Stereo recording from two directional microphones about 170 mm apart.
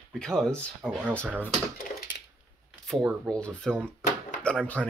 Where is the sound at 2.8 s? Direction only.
Centre (ahead or behind).